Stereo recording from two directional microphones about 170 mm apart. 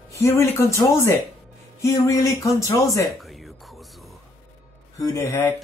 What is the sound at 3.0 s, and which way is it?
Music, centre (ahead or behind).